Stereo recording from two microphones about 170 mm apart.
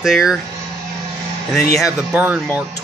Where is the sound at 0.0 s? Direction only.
Centre (ahead or behind).